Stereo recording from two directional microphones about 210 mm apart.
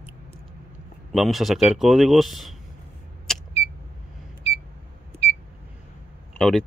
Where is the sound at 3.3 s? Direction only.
Centre (ahead or behind).